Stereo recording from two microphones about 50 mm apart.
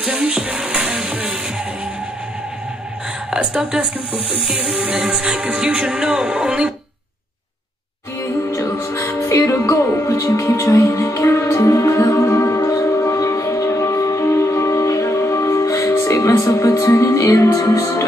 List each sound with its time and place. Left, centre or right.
0.0 s music: centre
3.3 s speech: right
4.4 s music: centre; by 6.7 s right
8.2 s music: left
11.1 s music: left